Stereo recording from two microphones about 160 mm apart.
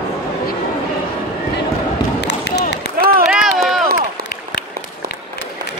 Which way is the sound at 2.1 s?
90° left.